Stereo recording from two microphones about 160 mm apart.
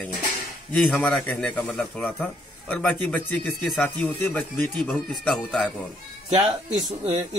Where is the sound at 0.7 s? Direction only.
5° left (ahead or behind).